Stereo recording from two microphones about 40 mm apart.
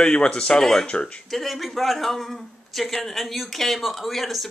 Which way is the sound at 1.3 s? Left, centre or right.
Centre.